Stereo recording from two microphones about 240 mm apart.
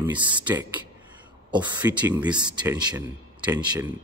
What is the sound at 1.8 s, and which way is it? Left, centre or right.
Speech, centre.